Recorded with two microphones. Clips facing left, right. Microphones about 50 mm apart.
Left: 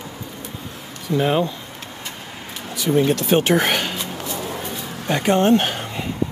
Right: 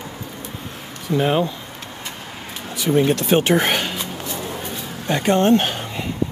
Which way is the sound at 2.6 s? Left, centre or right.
Right.